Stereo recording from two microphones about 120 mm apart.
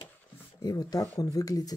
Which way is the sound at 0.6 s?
30° left (ahead or behind).